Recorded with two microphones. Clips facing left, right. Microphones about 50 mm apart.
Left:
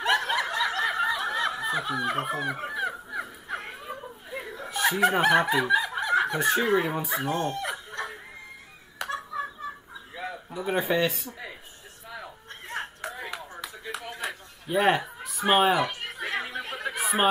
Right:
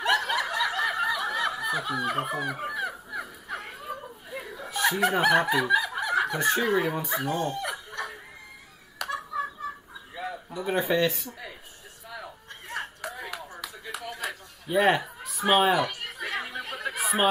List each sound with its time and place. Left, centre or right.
0.2 s snicker: centre
1.0 s snicker: centre
2.3 s speech: centre
2.6 s crow: centre
5.3 s speech: centre
5.6 s snicker: centre
6.3 s speech: centre
7.5 s chicken: centre
9.1 s a sound: centre
12.6 s a sound: left
13.4 s clapping: centre
14.7 s speech: centre
15.9 s chatter: centre
16.9 s a sound: centre